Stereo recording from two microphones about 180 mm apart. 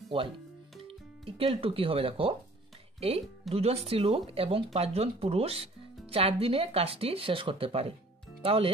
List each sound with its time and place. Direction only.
0.1 s speech: 30° right (ahead or behind)